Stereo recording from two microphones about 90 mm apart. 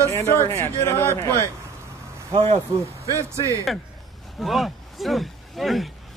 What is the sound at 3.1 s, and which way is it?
Speech, 35° left (ahead or behind).